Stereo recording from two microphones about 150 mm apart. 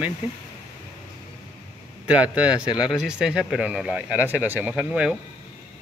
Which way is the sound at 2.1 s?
10° right (ahead or behind).